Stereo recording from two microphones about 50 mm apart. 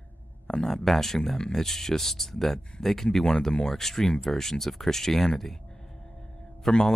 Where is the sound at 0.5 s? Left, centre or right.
Centre.